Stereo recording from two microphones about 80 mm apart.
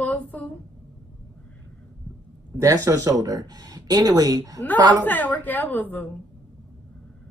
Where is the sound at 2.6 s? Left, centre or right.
Right.